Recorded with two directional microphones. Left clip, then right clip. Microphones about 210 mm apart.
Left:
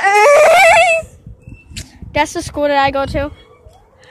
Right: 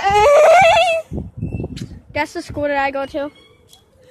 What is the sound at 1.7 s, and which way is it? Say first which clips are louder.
Speech: left 5 dB; 10° left (ahead or behind).